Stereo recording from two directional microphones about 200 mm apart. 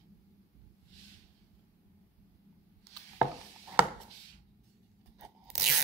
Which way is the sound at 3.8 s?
5° right (ahead or behind).